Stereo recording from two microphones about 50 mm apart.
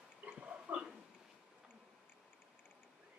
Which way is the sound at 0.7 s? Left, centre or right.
Right.